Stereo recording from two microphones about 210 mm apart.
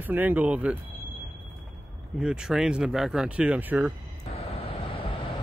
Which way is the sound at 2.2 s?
5° right (ahead or behind).